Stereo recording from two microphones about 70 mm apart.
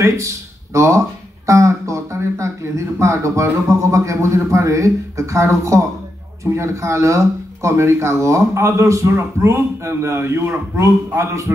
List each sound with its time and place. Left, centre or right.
0.0 s a man's voice: right